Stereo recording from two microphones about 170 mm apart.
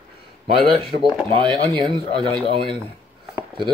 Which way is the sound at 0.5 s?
35° right (ahead or behind).